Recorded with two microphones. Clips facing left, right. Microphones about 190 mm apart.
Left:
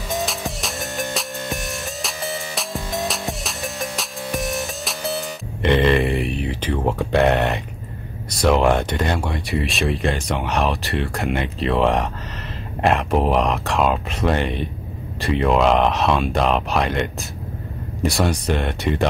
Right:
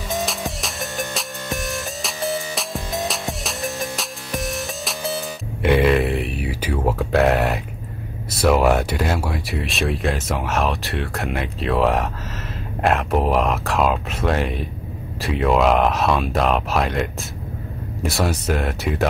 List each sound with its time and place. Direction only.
0.1 s music: centre (ahead or behind)
8.4 s speech: 5° right (ahead or behind)